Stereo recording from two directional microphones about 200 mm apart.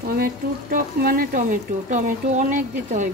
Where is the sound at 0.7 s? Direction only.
45° right (ahead or behind).